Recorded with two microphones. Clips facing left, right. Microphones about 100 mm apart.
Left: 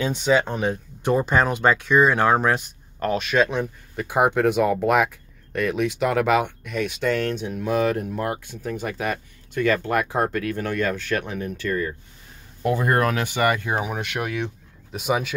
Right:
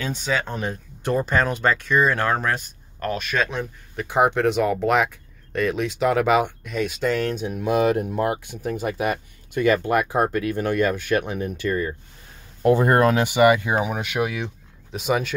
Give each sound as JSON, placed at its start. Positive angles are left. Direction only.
{"t": 0.0, "sound": "speech", "side_deg": 20}
{"t": 12.6, "sound": "speech", "side_deg": -30}